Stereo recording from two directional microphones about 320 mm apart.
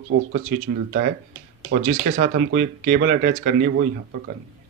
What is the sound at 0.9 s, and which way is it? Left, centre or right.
Speech, right.